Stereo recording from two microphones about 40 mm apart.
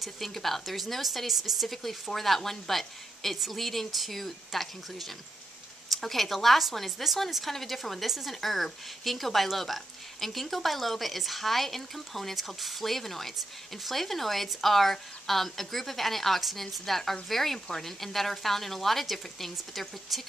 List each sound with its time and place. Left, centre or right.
0.0 s speech: centre